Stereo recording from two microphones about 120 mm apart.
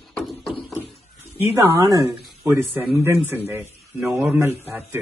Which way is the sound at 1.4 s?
25° right (ahead or behind).